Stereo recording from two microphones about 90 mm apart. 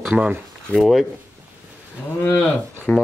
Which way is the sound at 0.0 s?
15° right (ahead or behind).